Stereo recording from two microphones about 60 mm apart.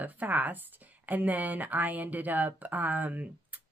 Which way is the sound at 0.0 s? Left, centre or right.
Right.